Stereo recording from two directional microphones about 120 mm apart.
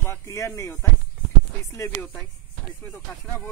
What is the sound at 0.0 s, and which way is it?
Speech, 25° left (ahead or behind).